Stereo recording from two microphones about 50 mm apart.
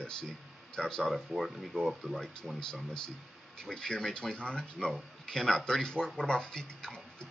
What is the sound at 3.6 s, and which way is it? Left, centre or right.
Speech, centre.